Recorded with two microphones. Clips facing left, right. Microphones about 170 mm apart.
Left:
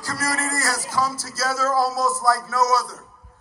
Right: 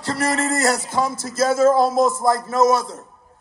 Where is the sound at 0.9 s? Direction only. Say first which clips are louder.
Right 5 dB; 20° right (ahead or behind).